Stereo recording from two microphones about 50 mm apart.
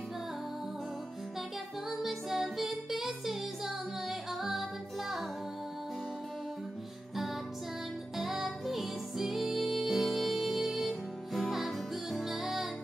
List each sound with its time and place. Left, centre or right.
1.9 s music: centre
8.2 s music: centre